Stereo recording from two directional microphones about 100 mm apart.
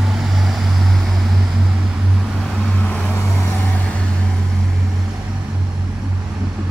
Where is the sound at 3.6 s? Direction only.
10° left (ahead or behind).